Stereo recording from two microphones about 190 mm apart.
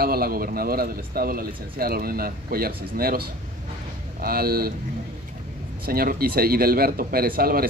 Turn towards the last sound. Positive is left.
turn(degrees=-50)  # may be behind; listen again after turning